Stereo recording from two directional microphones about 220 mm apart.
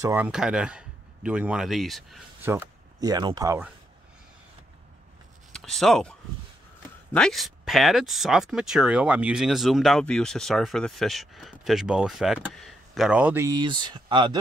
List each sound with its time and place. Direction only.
0.0 s a man's voice: 10° right (ahead or behind)
2.5 s speech: 15° right (ahead or behind)
5.5 s speech: centre (ahead or behind); by 14.4 s 20° right (ahead or behind)